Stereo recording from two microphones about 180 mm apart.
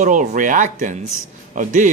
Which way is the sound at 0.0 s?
40° right (ahead or behind).